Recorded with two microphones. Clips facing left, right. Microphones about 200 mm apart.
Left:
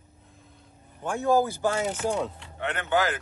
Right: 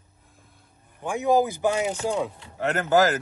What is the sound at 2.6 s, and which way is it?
Speech, 40° right (ahead or behind).